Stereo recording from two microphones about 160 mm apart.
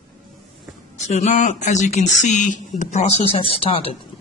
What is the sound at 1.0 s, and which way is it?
Speech, 50° left (ahead or behind).